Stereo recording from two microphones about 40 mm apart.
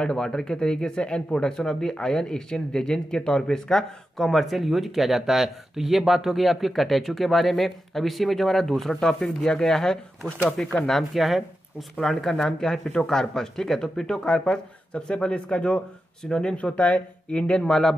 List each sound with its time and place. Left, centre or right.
0.0 s speech: centre
11.1 s speech: centre
12.0 s speech: centre
16.6 s speech: left; by 17.9 s centre